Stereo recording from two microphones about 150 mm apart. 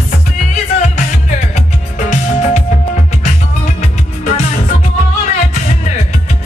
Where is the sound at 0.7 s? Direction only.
55° left (ahead or behind).